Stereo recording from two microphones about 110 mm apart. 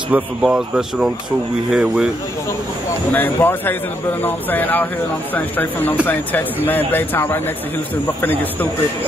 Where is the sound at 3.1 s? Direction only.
20° left (ahead or behind).